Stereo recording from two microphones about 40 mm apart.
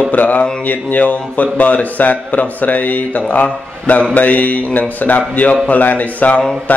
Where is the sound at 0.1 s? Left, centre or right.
Left.